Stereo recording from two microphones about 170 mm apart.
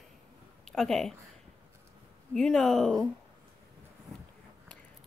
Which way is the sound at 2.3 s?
5° left (ahead or behind).